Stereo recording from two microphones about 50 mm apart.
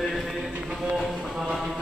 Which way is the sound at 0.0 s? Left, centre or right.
Centre.